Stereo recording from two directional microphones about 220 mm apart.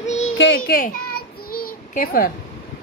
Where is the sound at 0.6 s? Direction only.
40° left (ahead or behind).